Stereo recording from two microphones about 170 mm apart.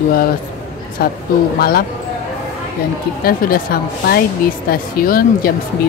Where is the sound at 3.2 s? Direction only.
60° left (ahead or behind).